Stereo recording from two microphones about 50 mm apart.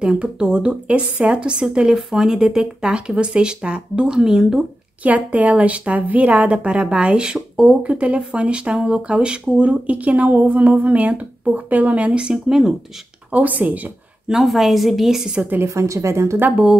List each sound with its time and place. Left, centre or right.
0.0 s speech: centre
5.0 s speech: right; by 12.7 s centre
13.3 s speech: right
14.3 s a woman's voice: centre
15.6 s speech: right